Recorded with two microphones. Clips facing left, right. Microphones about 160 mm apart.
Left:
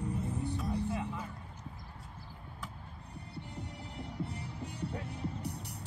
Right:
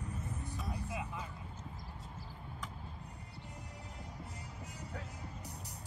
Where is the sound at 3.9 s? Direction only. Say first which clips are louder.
Left 11 dB; 65° left (ahead or behind).